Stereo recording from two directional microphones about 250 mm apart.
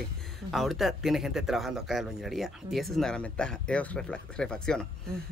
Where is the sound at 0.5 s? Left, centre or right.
Centre.